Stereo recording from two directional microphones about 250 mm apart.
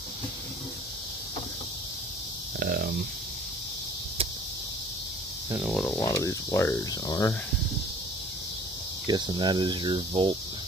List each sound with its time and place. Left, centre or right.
2.6 s a sound: right
5.5 s speech: centre
5.9 s speech: centre
9.0 s speech: centre